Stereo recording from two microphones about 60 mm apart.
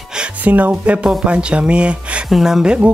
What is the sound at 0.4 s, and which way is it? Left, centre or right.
A man's voice, right.